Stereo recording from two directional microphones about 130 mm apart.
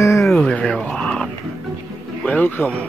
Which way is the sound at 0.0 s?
20° left (ahead or behind).